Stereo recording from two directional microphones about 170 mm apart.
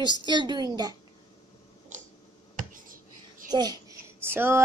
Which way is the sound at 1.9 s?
45° right (ahead or behind).